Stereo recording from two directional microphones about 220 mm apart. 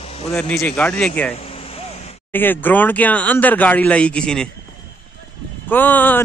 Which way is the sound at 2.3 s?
10° left (ahead or behind).